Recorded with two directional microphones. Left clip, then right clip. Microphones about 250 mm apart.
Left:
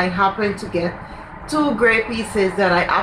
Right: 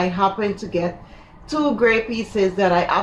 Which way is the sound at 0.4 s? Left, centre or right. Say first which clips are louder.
Left 1 dB; centre.